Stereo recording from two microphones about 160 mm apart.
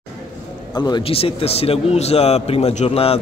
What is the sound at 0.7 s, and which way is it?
A man's voice, 25° left (ahead or behind).